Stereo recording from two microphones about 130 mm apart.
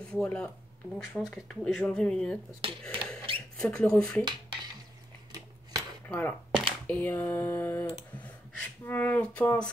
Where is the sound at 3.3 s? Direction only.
45° right (ahead or behind).